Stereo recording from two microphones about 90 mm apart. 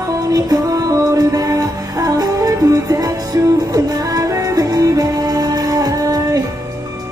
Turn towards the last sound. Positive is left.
turn(degrees=-40)  # may be behind; listen again after turning